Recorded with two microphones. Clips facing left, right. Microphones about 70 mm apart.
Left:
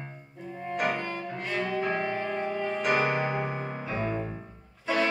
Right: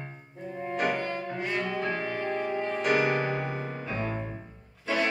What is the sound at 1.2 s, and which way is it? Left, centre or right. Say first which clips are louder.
Cello: right 1 dB; centre.